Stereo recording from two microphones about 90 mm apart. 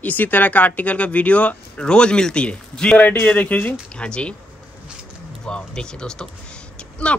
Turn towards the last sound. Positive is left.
turn(degrees=10)  # may be behind; listen again after turning